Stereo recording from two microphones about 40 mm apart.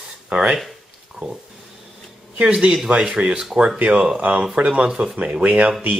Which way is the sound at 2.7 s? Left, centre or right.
Centre.